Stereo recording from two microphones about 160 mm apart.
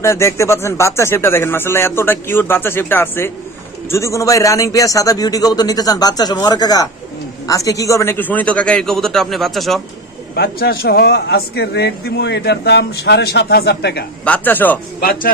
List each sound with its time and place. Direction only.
0.0 s a man's voice: 15° left (ahead or behind); by 9.8 s centre (ahead or behind)
10.3 s a man's voice: 75° left (ahead or behind); by 14.0 s 90° left
14.2 s speech: 10° left (ahead or behind)
15.0 s speech: 65° left (ahead or behind)